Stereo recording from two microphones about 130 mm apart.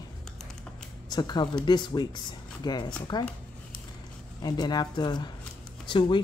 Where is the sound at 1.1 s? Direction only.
35° left (ahead or behind).